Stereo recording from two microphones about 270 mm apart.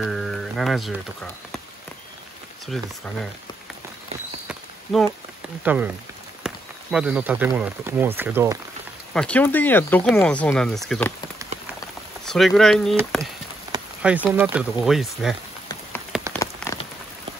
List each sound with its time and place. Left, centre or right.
0.0 s speech: centre
2.6 s speech: centre
4.9 s speech: centre
9.1 s speech: centre
12.3 s speech: centre
16.3 s rain on surface: centre